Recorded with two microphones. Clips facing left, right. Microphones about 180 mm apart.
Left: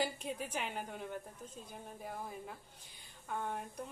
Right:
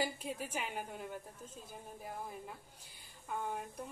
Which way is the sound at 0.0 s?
10° right (ahead or behind).